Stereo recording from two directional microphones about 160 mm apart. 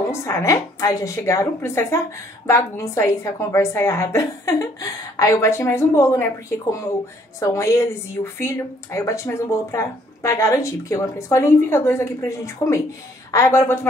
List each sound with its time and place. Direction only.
0.1 s a woman's voice: 15° left (ahead or behind)
7.3 s a woman's voice: 20° left (ahead or behind)